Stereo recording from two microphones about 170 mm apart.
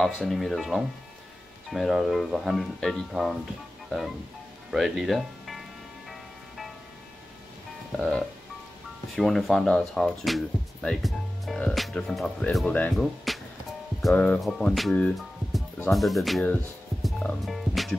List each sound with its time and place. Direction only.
0.0 s speech: centre (ahead or behind)
4.6 s speech: centre (ahead or behind)
6.0 s music: centre (ahead or behind)
9.1 s speech: centre (ahead or behind)
17.0 s music: centre (ahead or behind)